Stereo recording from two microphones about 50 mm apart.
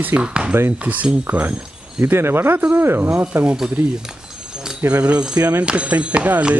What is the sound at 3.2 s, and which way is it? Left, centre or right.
Speech, right.